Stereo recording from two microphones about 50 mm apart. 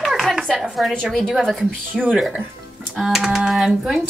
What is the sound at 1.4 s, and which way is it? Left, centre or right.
Speech, centre.